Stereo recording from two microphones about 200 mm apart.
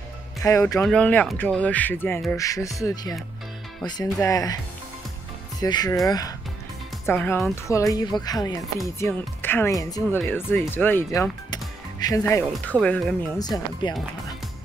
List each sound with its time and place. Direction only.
0.4 s speech: 15° left (ahead or behind)
5.6 s speech: 20° left (ahead or behind)
12.8 s speech: 5° left (ahead or behind)
13.4 s speech: 20° left (ahead or behind)